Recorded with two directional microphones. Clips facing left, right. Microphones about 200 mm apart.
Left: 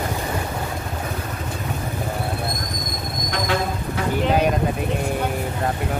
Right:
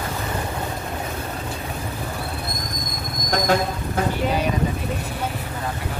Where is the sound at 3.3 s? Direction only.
45° right (ahead or behind).